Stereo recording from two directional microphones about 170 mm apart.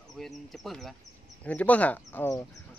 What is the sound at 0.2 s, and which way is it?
A man's voice, centre (ahead or behind).